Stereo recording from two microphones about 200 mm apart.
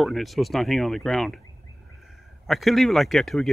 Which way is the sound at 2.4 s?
Centre (ahead or behind).